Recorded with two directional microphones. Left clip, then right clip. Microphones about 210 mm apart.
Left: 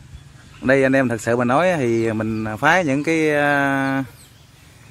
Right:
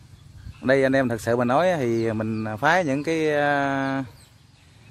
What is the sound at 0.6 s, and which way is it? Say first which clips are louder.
Speech: left 4 dB; centre (ahead or behind).